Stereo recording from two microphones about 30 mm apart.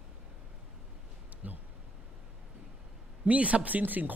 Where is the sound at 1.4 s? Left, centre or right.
Right.